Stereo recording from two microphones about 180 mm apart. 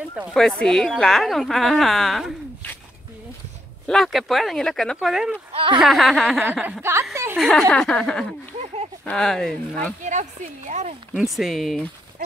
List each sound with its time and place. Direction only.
0.1 s speech: centre (ahead or behind)
3.8 s speech: centre (ahead or behind)
5.5 s speech: 30° right (ahead or behind)
5.8 s speech: centre (ahead or behind)
7.3 s speech: centre (ahead or behind)
10.0 s speech: 40° right (ahead or behind)
11.3 s speech: centre (ahead or behind)